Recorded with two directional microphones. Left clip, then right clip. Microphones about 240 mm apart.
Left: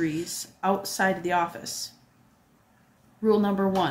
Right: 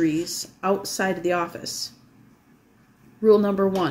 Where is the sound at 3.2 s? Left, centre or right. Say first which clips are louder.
Right 6 dB; centre.